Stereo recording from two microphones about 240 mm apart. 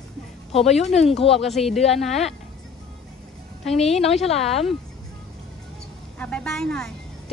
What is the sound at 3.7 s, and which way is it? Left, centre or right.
Speech, left.